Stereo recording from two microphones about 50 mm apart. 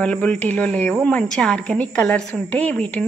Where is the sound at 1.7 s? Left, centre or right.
Left.